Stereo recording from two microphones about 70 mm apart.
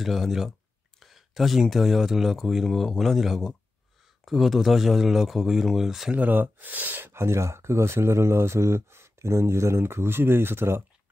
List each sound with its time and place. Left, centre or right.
0.0 s speech: centre
6.1 s speech: right
7.1 s speech: right